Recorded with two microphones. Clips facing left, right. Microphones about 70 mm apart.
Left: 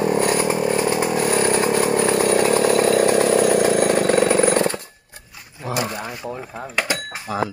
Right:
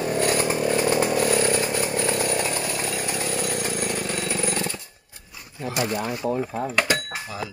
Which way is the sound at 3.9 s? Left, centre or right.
Left.